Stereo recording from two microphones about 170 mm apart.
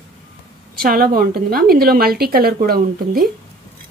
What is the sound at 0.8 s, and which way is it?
A woman's voice, 60° right (ahead or behind).